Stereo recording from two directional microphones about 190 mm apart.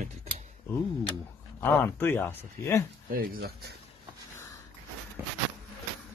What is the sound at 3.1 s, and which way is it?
Speech, 50° right (ahead or behind).